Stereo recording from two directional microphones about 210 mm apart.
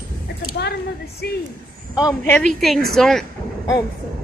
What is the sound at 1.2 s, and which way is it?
Speech, 50° left (ahead or behind).